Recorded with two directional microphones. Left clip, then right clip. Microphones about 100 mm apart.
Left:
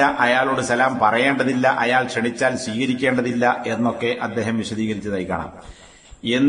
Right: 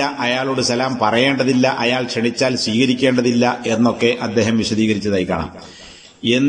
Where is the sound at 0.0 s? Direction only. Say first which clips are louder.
Left 2 dB; 20° right (ahead or behind).